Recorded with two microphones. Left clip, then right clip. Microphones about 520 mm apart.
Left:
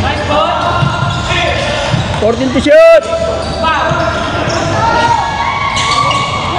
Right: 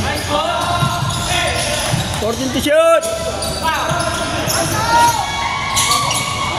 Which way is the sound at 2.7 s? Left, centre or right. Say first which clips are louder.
Left 8 dB; right.